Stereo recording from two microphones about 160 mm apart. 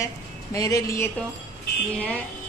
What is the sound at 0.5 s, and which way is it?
Speech, 20° left (ahead or behind).